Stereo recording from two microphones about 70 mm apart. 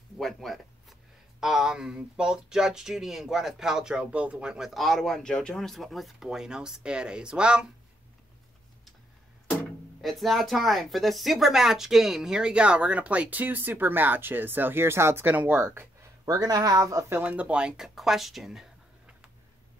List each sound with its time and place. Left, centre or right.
0.2 s speech: centre
10.0 s speech: centre; by 15.3 s right
15.3 s speech: right
16.3 s speech: right
17.2 s speech: right; by 18.7 s centre